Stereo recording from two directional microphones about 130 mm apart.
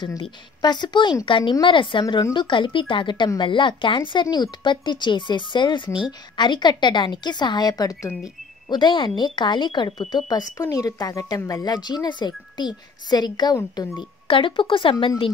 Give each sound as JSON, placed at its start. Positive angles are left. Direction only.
{"t": 0.0, "sound": "speech", "side_deg": 35}